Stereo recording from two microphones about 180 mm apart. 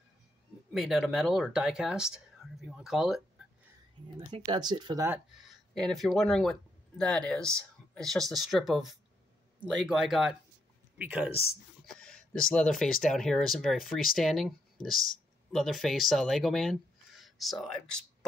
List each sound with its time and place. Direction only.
0.7 s speech: centre (ahead or behind)
4.3 s speech: 25° right (ahead or behind)
5.3 s speech: centre (ahead or behind)
11.8 s speech: 5° left (ahead or behind)